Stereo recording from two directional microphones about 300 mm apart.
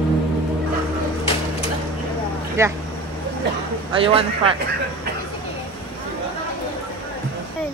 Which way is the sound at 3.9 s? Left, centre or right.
Centre.